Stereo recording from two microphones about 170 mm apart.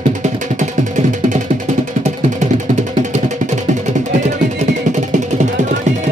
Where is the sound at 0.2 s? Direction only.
45° right (ahead or behind).